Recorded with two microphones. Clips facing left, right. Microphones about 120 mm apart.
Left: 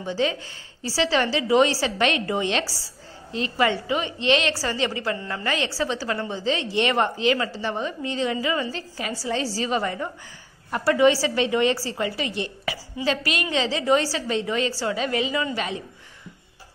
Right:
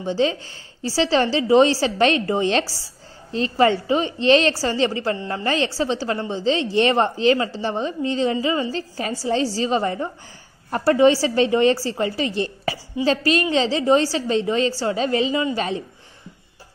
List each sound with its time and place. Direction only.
0.0 s a woman's voice: 30° right (ahead or behind)